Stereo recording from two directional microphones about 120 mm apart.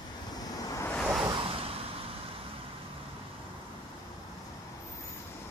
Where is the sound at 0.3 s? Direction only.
30° left (ahead or behind).